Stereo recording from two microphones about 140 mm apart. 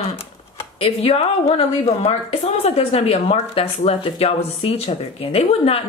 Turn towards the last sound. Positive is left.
turn(degrees=45)  # may be behind; listen again after turning